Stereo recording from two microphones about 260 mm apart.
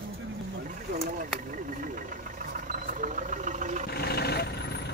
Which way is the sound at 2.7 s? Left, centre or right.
Right.